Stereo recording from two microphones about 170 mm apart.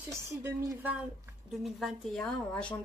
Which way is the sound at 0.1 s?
15° right (ahead or behind).